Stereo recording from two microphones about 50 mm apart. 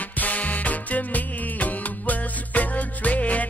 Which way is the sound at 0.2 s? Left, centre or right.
Left.